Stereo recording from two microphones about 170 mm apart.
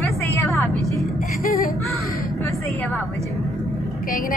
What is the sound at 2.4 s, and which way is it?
Speech, 20° left (ahead or behind).